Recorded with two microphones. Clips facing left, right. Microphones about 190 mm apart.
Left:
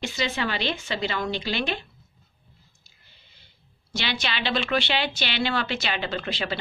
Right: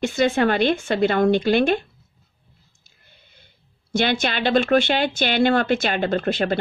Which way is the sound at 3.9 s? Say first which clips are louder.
Right 9 dB; 50° right (ahead or behind).